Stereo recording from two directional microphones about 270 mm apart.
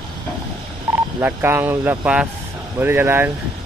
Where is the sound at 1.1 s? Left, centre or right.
Centre.